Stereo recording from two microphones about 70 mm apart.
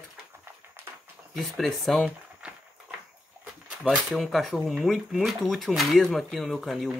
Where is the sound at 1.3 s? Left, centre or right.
Centre.